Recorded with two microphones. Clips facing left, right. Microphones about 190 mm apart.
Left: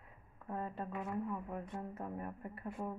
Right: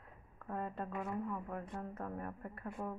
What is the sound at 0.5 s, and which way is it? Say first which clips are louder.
A woman's voice: right 1 dB; centre (ahead or behind).